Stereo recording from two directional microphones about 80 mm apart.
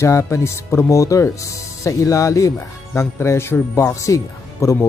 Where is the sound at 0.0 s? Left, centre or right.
Left.